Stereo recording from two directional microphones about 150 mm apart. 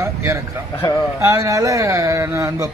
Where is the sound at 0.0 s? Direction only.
20° right (ahead or behind).